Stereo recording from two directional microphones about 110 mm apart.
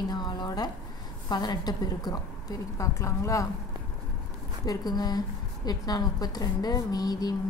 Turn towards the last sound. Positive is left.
turn(degrees=35)  # may be behind; listen again after turning